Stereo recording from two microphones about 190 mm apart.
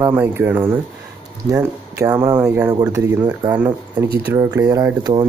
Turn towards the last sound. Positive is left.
turn(degrees=-20)  # may be behind; listen again after turning